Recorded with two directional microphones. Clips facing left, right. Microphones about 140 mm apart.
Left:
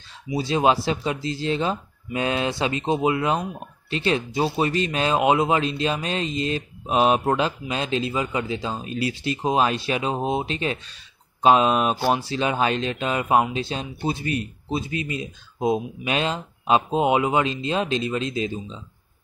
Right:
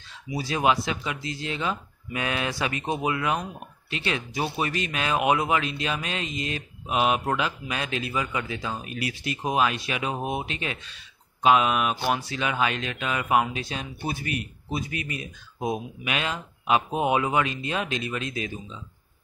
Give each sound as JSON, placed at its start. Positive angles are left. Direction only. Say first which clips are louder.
{"t": 0.3, "sound": "speech", "louder": "left 4 dB", "side_deg": 25}